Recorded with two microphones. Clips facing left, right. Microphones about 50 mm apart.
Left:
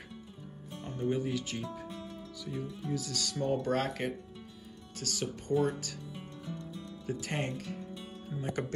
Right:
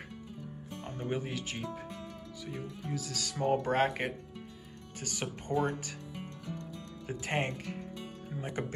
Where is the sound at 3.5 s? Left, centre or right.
Right.